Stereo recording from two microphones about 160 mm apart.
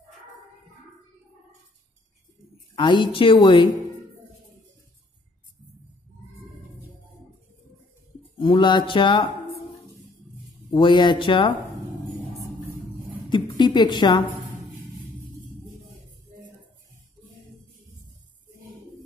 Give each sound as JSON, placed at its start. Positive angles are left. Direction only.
{"t": 2.7, "sound": "a woman's voice", "side_deg": 30}
{"t": 8.4, "sound": "speech", "side_deg": 30}
{"t": 10.7, "sound": "a woman's voice", "side_deg": 30}
{"t": 13.3, "sound": "a woman's voice", "side_deg": 30}